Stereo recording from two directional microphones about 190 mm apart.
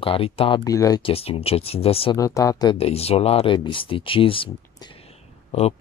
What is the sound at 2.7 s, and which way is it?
Speech, 30° left (ahead or behind).